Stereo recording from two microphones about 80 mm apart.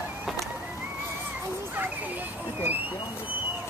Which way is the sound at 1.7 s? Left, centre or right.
Right.